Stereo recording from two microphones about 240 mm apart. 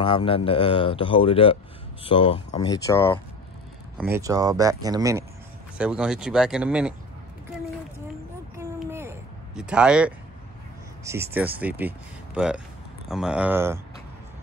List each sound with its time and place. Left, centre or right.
0.0 s speech: left
4.0 s speech: centre
5.8 s speech: centre
8.7 s a sound: centre
11.1 s speech: centre